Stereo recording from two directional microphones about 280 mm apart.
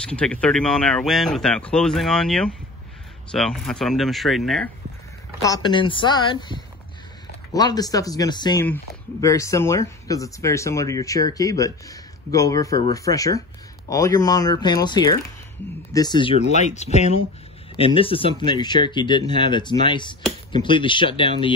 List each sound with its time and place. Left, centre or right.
0.0 s speech: centre
5.4 s speech: centre